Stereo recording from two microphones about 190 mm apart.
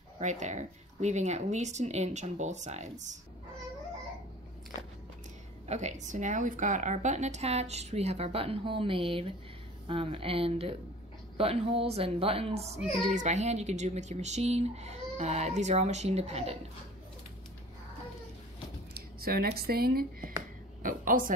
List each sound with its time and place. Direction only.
0.2 s a woman's voice: 40° right (ahead or behind)
5.7 s a woman's voice: 35° right (ahead or behind)
18.9 s a sound: 55° right (ahead or behind)
19.6 s a woman's voice: 55° right (ahead or behind)